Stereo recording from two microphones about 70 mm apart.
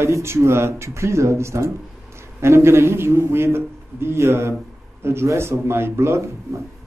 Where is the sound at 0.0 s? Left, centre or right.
Right.